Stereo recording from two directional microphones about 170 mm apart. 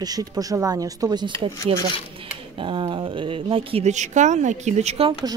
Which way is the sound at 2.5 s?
30° right (ahead or behind).